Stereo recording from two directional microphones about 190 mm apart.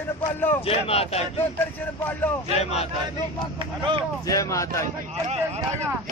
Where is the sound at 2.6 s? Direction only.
35° left (ahead or behind).